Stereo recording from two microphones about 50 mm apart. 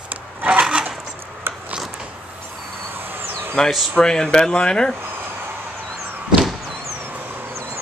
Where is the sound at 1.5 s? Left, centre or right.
Right.